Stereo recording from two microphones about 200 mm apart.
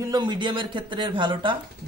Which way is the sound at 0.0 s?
20° right (ahead or behind).